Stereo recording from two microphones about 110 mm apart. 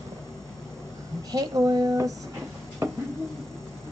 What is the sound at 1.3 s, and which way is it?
Speech, 35° right (ahead or behind).